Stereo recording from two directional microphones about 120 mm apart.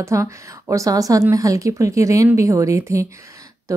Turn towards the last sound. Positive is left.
turn(degrees=-25)  # may be behind; listen again after turning